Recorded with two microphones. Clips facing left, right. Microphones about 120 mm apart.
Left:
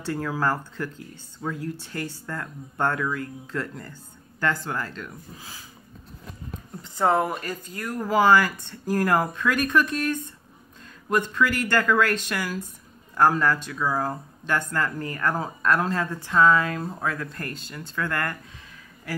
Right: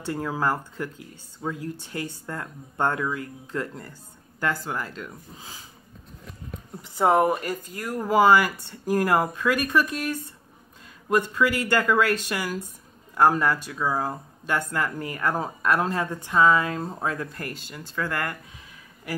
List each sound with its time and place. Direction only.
0.0 s speech: 20° right (ahead or behind)
4.4 s speech: 5° right (ahead or behind)
7.0 s speech: 15° right (ahead or behind)